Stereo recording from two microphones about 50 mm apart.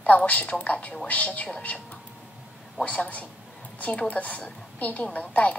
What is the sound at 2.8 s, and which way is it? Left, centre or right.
A woman's voice, left.